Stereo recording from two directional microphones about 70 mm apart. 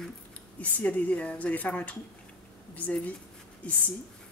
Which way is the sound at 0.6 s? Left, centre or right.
Left.